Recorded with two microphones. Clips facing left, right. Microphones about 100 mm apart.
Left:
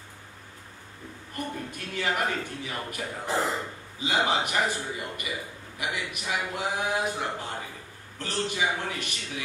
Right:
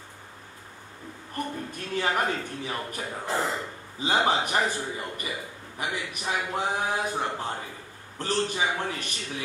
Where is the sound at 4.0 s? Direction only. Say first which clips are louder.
Right 2 dB; 40° right (ahead or behind).